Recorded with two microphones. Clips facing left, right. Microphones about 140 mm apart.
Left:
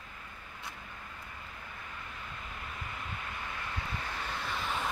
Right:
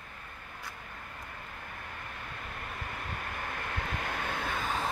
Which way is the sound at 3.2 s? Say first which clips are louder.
Right 3 dB; 55° right (ahead or behind).